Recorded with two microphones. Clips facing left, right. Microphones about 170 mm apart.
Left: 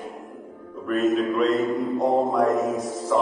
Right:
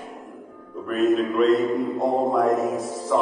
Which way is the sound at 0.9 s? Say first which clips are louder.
Right 1 dB; centre (ahead or behind).